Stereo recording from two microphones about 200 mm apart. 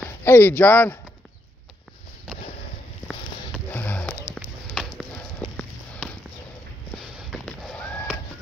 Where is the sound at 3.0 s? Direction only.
5° left (ahead or behind).